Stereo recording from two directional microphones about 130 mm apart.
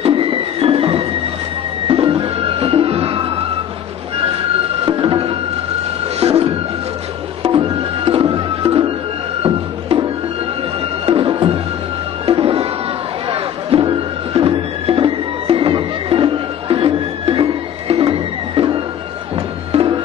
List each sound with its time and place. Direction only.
0.0 s music: 45° right (ahead or behind)
4.8 s music: 45° right (ahead or behind)
6.1 s a sound: 50° right (ahead or behind)
7.5 s music: 45° right (ahead or behind)
11.1 s music: 45° right (ahead or behind)
13.3 s chatter: 45° right (ahead or behind)
14.3 s music: 45° right (ahead or behind)